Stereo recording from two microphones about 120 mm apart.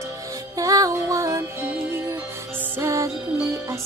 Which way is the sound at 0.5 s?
30° right (ahead or behind).